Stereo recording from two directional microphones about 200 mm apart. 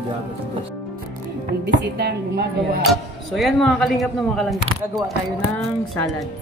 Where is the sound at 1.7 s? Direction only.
60° right (ahead or behind).